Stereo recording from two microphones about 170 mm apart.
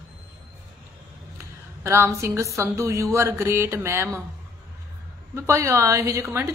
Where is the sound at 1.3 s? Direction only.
15° right (ahead or behind).